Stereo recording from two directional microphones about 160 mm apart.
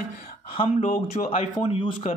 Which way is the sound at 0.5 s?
40° left (ahead or behind).